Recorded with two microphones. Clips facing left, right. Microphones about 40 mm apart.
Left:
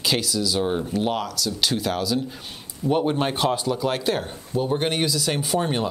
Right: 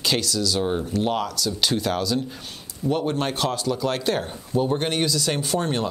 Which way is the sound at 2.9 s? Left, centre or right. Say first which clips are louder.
Left 2 dB; centre.